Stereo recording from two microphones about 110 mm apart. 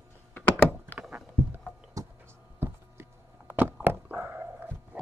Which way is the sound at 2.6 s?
20° right (ahead or behind).